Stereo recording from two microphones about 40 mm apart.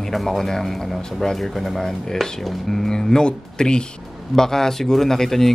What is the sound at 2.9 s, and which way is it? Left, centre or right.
A man's voice, centre.